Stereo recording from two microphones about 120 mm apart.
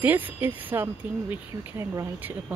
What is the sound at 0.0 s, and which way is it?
Speech, 15° right (ahead or behind).